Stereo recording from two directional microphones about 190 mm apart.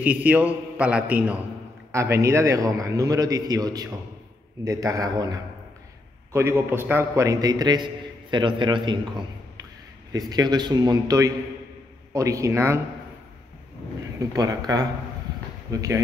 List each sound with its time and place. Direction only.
0.0 s a man's voice: 10° right (ahead or behind); by 9.0 s 25° right (ahead or behind)
10.1 s a man's voice: 20° right (ahead or behind)
14.2 s a man's voice: 20° right (ahead or behind)